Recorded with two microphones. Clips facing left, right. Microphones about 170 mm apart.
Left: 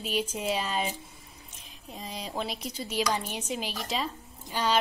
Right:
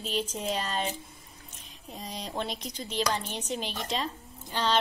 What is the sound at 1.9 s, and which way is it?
A woman's voice, centre (ahead or behind).